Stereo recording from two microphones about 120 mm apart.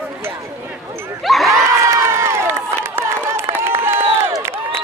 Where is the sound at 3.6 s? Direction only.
20° right (ahead or behind).